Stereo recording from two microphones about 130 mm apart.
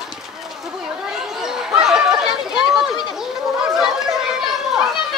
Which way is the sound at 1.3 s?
5° right (ahead or behind).